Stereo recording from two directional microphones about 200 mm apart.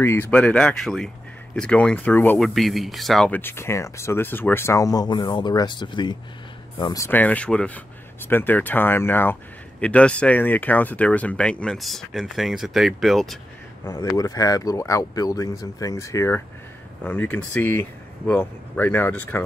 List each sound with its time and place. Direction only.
0.0 s speech: 10° left (ahead or behind)
13.8 s speech: 15° left (ahead or behind)